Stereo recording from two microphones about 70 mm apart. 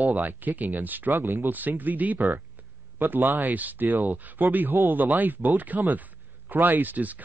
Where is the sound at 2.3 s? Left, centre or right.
Right.